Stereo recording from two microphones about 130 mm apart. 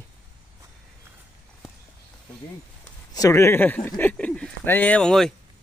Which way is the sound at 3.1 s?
20° left (ahead or behind).